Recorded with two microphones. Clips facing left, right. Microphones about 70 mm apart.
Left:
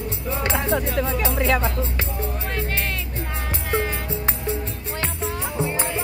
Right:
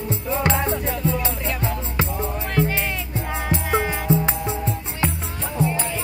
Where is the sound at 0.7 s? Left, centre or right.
Left.